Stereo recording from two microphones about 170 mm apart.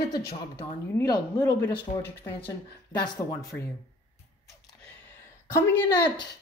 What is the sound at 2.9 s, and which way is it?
Speech, 25° left (ahead or behind).